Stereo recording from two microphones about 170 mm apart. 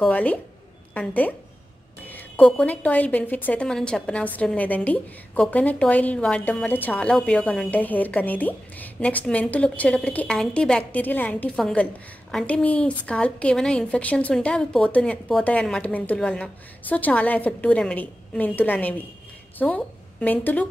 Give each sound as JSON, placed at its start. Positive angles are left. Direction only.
{"t": 0.0, "sound": "a woman's voice", "side_deg": 10}